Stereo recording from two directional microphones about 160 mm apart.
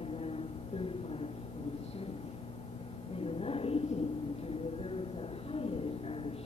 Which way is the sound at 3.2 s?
35° left (ahead or behind).